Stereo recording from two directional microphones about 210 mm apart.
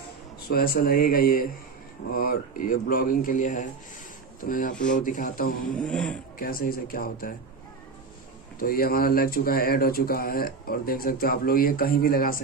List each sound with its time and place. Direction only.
0.5 s speech: 45° left (ahead or behind)
5.8 s speech: 5° left (ahead or behind)
6.3 s speech: 45° left (ahead or behind)
8.5 s speech: 45° left (ahead or behind)